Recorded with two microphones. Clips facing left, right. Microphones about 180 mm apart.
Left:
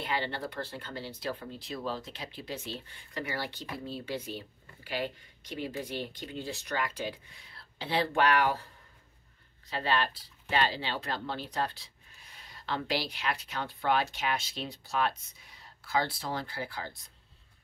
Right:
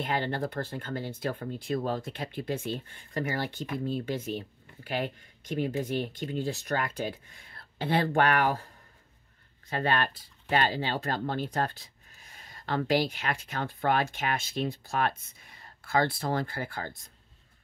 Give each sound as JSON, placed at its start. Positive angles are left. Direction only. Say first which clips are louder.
{"t": 0.0, "sound": "speech", "louder": "right 4 dB", "side_deg": -45}
{"t": 9.7, "sound": "speech", "louder": "right 2 dB", "side_deg": -50}